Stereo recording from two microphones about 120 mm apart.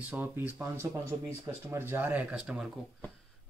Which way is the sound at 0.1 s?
15° right (ahead or behind).